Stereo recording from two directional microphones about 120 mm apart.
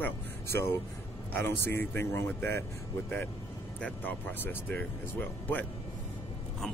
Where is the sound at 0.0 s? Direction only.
20° left (ahead or behind).